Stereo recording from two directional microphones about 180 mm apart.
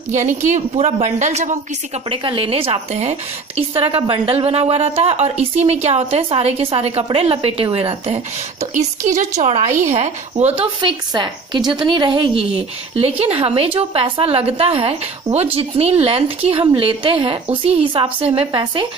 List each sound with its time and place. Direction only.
0.1 s a woman's voice: 40° right (ahead or behind)
2.0 s a woman's voice: 30° right (ahead or behind)